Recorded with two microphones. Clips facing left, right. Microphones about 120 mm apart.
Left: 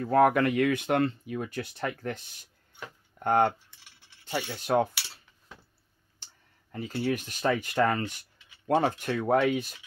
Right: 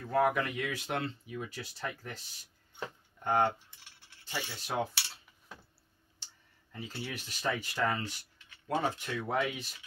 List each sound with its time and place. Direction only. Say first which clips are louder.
0.0 s speech: left 7 dB; 60° left (ahead or behind)
3.3 s speech: left 5 dB; 60° left (ahead or behind)
6.2 s a sound: left 2 dB; 55° left (ahead or behind)
6.7 s speech: left 11 dB; 55° left (ahead or behind)